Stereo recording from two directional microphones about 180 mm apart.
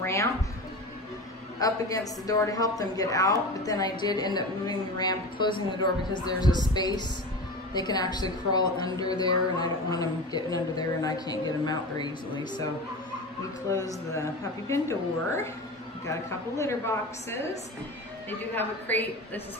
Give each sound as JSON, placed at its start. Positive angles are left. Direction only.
{"t": 0.0, "sound": "music", "side_deg": 15}
{"t": 1.6, "sound": "a woman's voice", "side_deg": 20}
{"t": 13.7, "sound": "a woman's voice", "side_deg": 15}
{"t": 18.5, "sound": "a woman's voice", "side_deg": 10}